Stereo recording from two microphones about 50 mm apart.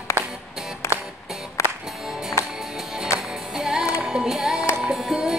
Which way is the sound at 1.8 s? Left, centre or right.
Centre.